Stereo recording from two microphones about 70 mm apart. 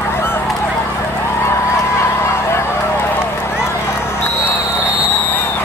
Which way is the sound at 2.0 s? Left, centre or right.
Left.